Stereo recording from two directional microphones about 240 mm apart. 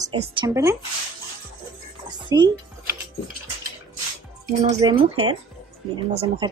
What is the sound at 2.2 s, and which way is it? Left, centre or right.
Speech, centre.